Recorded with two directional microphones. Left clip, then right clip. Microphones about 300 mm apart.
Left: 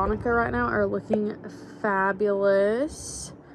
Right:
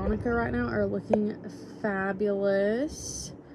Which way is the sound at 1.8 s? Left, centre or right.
Centre.